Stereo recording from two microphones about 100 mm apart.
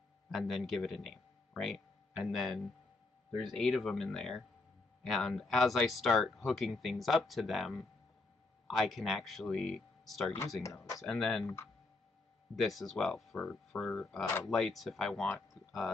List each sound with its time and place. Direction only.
0.3 s speech: centre (ahead or behind)
10.6 s speech: 30° left (ahead or behind)
11.0 s speech: centre (ahead or behind)
11.4 s speech: 25° left (ahead or behind)
12.5 s speech: centre (ahead or behind)